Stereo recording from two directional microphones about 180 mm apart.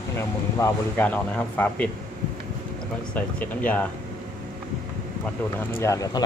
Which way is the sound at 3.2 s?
10° left (ahead or behind).